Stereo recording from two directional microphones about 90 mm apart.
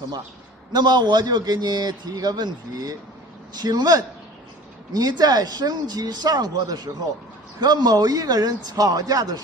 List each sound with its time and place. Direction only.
0.7 s a man's voice: 55° right (ahead or behind)